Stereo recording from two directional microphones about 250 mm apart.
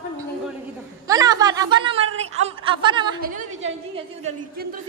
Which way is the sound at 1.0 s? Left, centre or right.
Centre.